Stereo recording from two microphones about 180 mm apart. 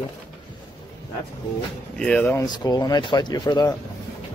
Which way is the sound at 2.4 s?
20° left (ahead or behind).